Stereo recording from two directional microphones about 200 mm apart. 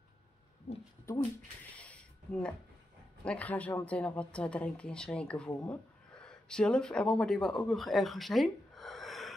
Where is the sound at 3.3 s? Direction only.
5° left (ahead or behind).